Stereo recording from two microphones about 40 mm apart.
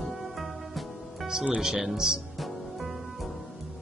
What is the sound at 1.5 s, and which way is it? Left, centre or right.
Speech, centre.